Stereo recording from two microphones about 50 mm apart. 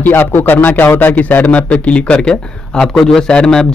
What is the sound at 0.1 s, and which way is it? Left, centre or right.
Speech, left.